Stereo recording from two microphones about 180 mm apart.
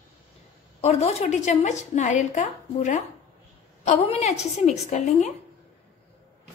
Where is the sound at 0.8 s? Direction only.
35° left (ahead or behind).